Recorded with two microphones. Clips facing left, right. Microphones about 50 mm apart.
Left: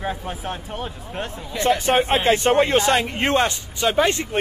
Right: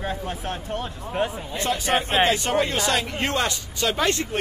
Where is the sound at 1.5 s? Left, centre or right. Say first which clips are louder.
Left 5 dB; left.